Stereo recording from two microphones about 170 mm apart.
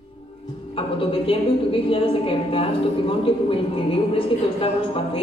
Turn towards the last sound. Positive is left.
turn(degrees=30)  # may be behind; listen again after turning